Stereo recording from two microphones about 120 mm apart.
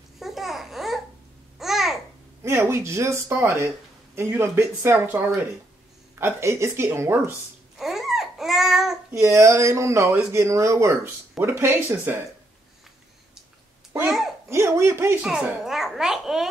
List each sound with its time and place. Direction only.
0.2 s babbling: centre (ahead or behind)
2.4 s speech: 20° right (ahead or behind)
6.1 s speech: 20° right (ahead or behind)
7.7 s babbling: 5° right (ahead or behind)
9.1 s speech: 25° right (ahead or behind)
14.0 s a child's voice: 5° right (ahead or behind)
14.5 s speech: 25° right (ahead or behind)
15.2 s a child's voice: 5° right (ahead or behind)